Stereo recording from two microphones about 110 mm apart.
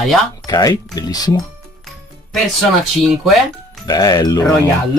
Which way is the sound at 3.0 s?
Centre (ahead or behind).